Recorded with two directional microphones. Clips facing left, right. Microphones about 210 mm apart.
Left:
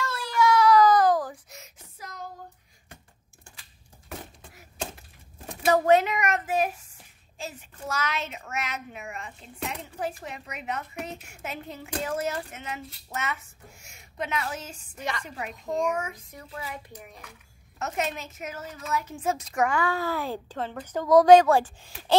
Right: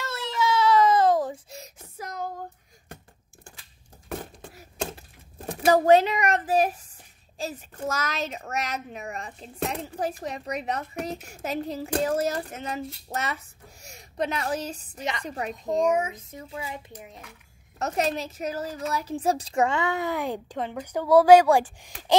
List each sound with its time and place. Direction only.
0.0 s a sound: 20° right (ahead or behind)
5.7 s a woman's voice: 30° right (ahead or behind)
15.9 s a woman's voice: 20° right (ahead or behind)
17.7 s a woman's voice: 35° right (ahead or behind); by 22.1 s 15° right (ahead or behind)